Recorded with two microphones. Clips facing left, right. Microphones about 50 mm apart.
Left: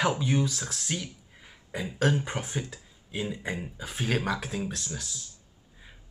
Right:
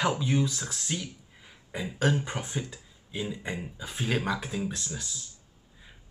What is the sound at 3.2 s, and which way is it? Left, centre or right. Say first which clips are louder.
Speech: left 1 dB; centre.